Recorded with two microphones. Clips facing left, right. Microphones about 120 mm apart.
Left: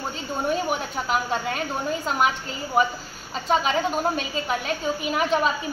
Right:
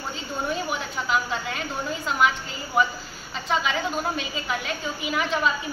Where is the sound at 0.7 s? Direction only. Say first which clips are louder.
Left 2 dB; 45° left (ahead or behind).